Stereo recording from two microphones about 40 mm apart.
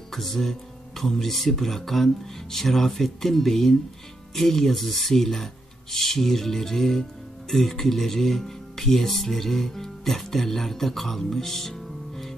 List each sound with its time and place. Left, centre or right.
0.1 s speech: centre